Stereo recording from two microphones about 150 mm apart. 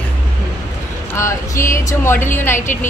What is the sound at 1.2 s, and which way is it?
Speech, 20° left (ahead or behind).